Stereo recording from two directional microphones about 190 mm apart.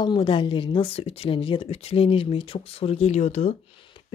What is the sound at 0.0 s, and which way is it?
Speech, 25° left (ahead or behind).